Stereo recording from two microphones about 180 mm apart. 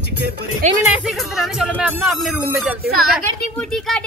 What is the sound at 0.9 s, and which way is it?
A woman's voice, 5° right (ahead or behind).